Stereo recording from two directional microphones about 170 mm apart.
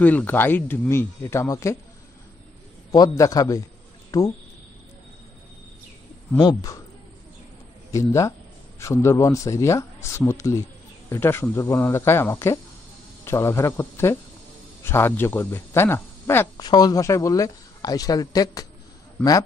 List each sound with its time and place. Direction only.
0.0 s speech: 10° left (ahead or behind)
2.9 s speech: 20° left (ahead or behind)
6.4 s speech: 20° left (ahead or behind)
7.9 s a man's voice: 20° left (ahead or behind)
19.2 s speech: 5° left (ahead or behind)